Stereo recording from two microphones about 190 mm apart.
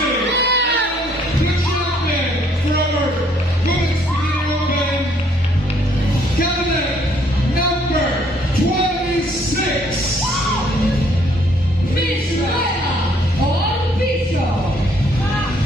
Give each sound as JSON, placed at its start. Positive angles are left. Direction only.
{"t": 0.4, "sound": "music", "side_deg": -65}